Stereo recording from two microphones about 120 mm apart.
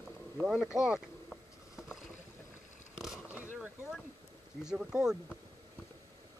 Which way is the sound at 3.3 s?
15° right (ahead or behind).